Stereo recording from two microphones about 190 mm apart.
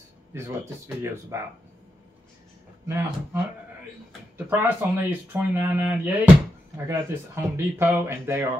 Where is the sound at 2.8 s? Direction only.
10° right (ahead or behind).